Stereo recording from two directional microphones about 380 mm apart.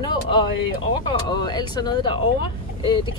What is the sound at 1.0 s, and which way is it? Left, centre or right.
Speech, centre.